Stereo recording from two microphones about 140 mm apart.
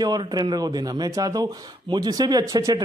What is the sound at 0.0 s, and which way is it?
Speech, 30° right (ahead or behind).